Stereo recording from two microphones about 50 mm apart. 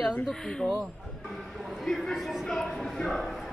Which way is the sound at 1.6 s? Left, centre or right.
Centre.